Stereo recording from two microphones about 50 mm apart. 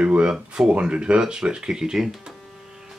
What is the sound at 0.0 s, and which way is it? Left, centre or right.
Speech, right.